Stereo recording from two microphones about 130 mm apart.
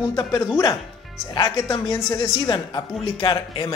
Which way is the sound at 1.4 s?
25° left (ahead or behind).